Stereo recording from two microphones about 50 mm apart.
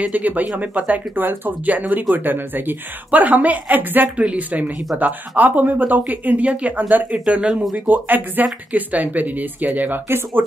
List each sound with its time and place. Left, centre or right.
0.1 s speech: right
10.0 s speech: right